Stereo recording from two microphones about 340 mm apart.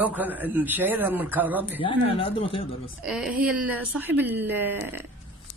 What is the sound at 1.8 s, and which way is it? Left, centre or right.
Speech, centre.